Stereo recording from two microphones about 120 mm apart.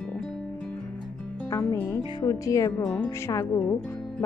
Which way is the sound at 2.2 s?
25° left (ahead or behind).